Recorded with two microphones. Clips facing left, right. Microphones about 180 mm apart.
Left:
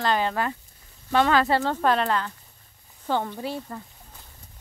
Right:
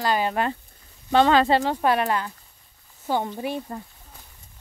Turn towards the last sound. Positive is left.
turn(degrees=-15)  # may be behind; listen again after turning